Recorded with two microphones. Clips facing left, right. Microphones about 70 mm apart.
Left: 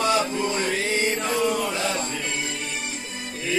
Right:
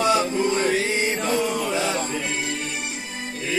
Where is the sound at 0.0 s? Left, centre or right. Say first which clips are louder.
Right 2 dB; right.